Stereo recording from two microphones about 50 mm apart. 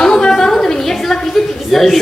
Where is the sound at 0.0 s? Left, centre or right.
Centre.